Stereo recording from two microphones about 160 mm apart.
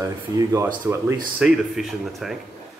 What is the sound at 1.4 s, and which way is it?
Speech, 5° right (ahead or behind).